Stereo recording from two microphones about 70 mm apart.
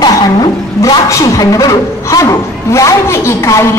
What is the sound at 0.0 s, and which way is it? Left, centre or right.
Vehicle, left.